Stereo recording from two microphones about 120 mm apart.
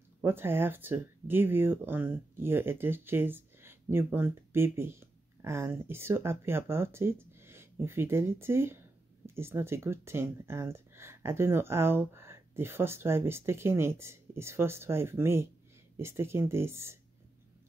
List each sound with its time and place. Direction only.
0.2 s speech: 20° right (ahead or behind)